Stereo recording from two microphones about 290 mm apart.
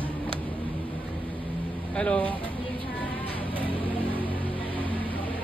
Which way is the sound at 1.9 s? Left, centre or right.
Centre.